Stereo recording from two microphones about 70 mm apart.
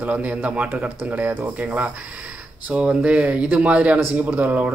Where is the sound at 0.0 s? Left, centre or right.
Right.